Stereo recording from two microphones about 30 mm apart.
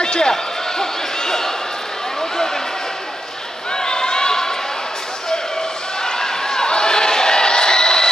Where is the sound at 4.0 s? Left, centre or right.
Left.